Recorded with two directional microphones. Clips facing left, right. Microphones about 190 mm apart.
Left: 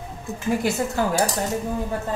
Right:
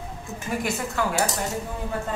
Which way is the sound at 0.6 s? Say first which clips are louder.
Left 4 dB; 35° left (ahead or behind).